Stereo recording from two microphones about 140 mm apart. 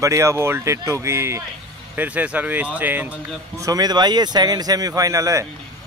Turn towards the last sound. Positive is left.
turn(degrees=-25)  # may be behind; listen again after turning